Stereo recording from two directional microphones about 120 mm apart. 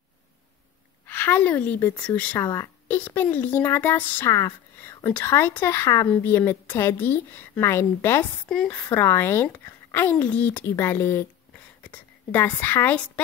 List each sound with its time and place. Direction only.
1.0 s a woman's voice: 15° left (ahead or behind)
2.3 s speech: 20° left (ahead or behind)
8.5 s a woman's voice: 5° left (ahead or behind)
8.7 s a woman's voice: 20° left (ahead or behind)